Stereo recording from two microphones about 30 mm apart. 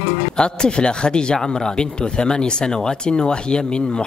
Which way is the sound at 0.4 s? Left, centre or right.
Left.